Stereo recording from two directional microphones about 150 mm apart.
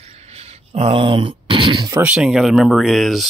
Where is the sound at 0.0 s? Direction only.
45° right (ahead or behind).